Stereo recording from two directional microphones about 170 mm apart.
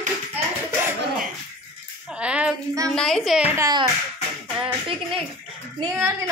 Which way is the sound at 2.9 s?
5° left (ahead or behind).